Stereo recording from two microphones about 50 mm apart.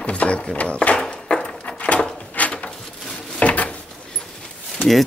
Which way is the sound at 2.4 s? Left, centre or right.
Left.